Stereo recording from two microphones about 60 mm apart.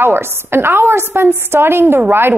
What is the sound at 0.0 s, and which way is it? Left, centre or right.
A woman's voice, right.